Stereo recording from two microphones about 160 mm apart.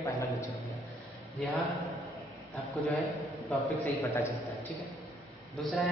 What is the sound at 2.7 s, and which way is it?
A man's voice, centre (ahead or behind).